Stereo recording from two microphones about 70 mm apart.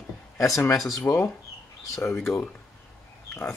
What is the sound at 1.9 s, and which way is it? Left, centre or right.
Speech, left.